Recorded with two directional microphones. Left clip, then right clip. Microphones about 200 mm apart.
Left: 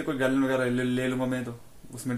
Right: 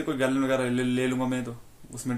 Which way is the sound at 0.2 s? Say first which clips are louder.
Even; centre (ahead or behind).